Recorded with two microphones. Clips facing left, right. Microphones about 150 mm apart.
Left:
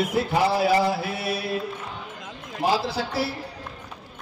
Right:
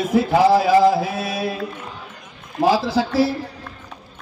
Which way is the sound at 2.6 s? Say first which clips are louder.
Right 6 dB; 90° right.